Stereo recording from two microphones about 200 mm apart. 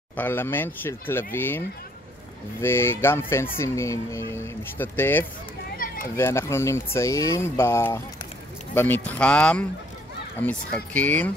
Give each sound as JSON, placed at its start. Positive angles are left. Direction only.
{"t": 0.1, "sound": "speech", "side_deg": 10}
{"t": 2.6, "sound": "speech", "side_deg": 10}
{"t": 5.8, "sound": "children playing", "side_deg": 45}
{"t": 6.1, "sound": "speech", "side_deg": 10}